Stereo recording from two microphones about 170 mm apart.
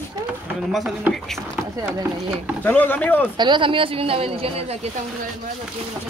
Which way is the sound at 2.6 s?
10° left (ahead or behind).